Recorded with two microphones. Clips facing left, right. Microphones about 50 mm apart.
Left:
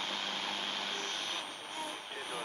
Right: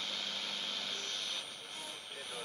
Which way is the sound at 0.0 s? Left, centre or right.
Left.